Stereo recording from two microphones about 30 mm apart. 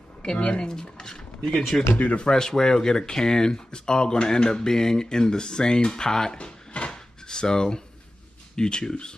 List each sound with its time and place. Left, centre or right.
0.2 s speech: left
1.7 s speech: left
2.1 s speech: left
6.3 s drawer open or close: left
6.9 s drawer open or close: left
8.5 s speech: left